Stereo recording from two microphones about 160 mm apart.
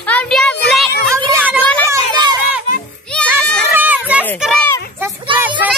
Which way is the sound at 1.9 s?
25° right (ahead or behind).